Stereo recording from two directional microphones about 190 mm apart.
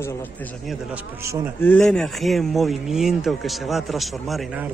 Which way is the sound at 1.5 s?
10° left (ahead or behind).